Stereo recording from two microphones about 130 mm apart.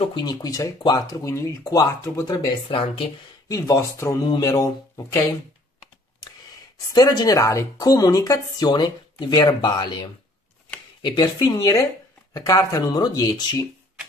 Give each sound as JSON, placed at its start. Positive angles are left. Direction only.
{"t": 0.1, "sound": "a woman's voice", "side_deg": 30}
{"t": 6.9, "sound": "a woman's voice", "side_deg": 30}